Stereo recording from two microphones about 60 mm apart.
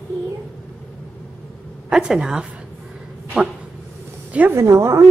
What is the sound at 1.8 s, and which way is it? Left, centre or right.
Speech, centre.